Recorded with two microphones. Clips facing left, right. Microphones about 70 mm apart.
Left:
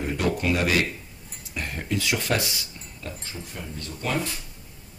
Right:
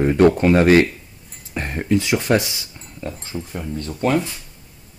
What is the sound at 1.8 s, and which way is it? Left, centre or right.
Speech, right.